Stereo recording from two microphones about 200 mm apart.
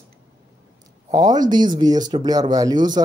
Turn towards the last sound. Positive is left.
turn(degrees=-20)  # may be behind; listen again after turning